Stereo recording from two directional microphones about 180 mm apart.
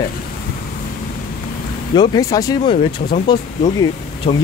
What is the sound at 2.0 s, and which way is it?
Speech, 20° left (ahead or behind).